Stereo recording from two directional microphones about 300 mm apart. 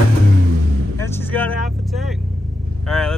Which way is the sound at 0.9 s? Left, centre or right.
Centre.